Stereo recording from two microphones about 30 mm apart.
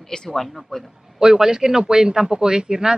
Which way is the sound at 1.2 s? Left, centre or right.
Right.